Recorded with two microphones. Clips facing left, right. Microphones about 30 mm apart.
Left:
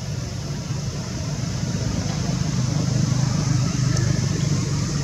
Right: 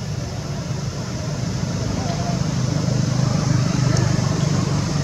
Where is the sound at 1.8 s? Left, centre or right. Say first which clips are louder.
Right 2 dB; centre.